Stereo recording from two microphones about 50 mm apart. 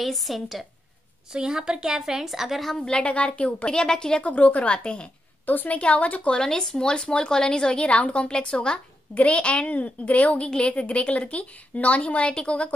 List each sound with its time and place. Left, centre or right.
0.0 s a woman's voice: centre
1.3 s a woman's voice: centre
2.8 s a woman's voice: centre
4.2 s a woman's voice: left
5.5 s a woman's voice: left
5.8 s a woman's voice: left
6.3 s a woman's voice: centre